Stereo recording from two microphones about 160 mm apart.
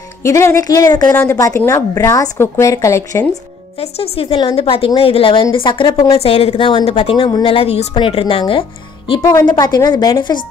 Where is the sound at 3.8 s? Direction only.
40° left (ahead or behind); by 6.2 s 20° left (ahead or behind).